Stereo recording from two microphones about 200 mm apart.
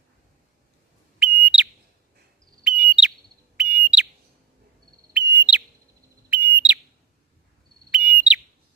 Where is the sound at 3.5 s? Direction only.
5° right (ahead or behind).